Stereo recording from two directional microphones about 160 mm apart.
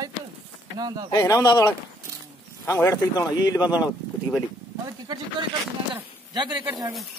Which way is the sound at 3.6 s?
5° right (ahead or behind).